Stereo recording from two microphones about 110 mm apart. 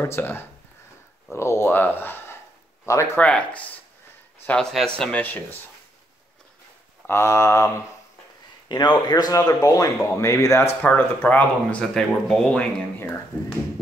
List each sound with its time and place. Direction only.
0.0 s speech: 20° left (ahead or behind)
3.2 s speech: 10° left (ahead or behind)
7.1 s speech: 25° left (ahead or behind)
8.6 s a man's voice: 40° left (ahead or behind)
10.8 s speech: 15° left (ahead or behind)